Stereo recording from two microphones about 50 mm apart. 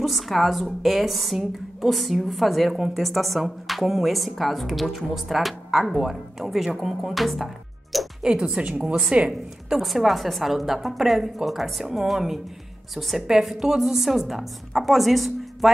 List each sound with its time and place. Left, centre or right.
0.0 s a woman's voice: centre
8.2 s a woman's voice: centre
9.7 s a woman's voice: centre